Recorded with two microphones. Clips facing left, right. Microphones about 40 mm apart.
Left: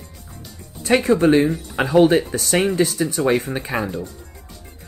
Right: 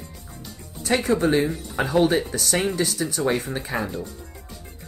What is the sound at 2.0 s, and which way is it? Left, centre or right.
Speech, left.